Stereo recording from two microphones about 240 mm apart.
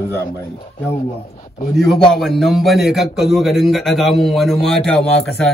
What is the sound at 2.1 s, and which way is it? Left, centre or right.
A man's voice, centre.